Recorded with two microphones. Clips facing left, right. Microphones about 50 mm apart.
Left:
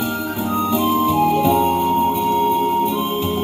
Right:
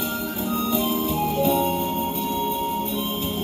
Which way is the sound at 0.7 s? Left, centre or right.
Left.